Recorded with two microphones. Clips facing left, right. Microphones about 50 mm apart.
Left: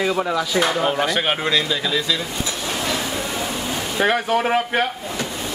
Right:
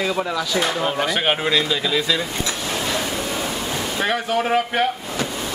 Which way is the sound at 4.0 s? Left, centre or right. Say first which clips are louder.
Left 3 dB; centre.